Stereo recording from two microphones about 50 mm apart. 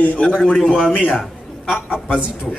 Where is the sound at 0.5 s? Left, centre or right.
Centre.